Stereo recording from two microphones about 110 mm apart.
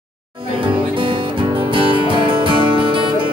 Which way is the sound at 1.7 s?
50° right (ahead or behind).